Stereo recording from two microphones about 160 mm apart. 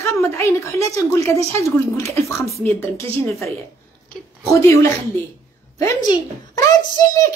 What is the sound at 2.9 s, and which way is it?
Speech, 20° left (ahead or behind).